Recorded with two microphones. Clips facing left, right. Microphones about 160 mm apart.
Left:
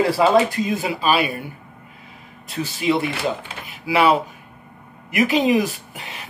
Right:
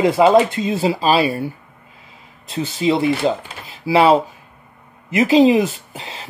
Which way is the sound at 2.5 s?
25° right (ahead or behind).